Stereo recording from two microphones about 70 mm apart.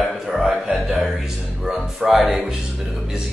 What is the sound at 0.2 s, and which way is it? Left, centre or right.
Music, centre.